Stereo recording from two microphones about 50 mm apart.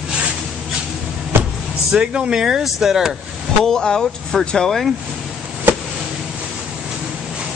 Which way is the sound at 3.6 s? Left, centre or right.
Centre.